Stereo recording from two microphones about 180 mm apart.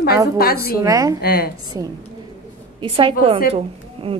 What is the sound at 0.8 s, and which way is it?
Speech, 20° right (ahead or behind).